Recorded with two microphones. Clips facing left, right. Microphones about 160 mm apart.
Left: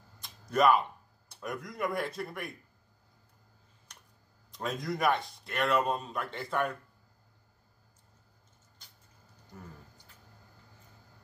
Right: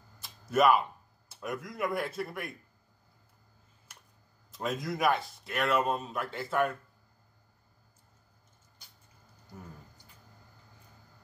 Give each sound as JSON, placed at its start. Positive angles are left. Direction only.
{"t": 0.2, "sound": "a sound", "side_deg": -5}
{"t": 1.3, "sound": "a man's voice", "side_deg": 0}
{"t": 4.5, "sound": "a man's voice", "side_deg": 0}